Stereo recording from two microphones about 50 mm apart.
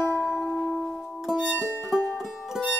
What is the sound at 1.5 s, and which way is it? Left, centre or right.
Music, centre.